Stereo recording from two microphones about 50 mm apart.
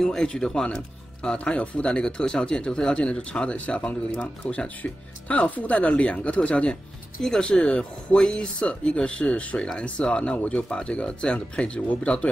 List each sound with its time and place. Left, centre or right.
0.0 s speech: centre